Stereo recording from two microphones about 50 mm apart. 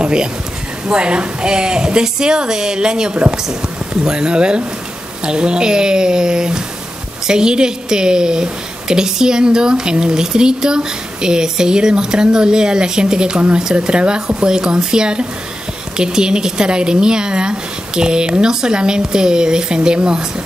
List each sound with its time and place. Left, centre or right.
0.0 s a woman's voice: centre